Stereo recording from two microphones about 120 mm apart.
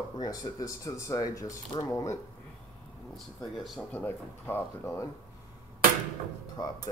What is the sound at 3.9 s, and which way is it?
Speech, 15° left (ahead or behind).